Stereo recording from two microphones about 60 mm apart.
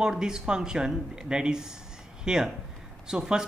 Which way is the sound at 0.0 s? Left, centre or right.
Centre.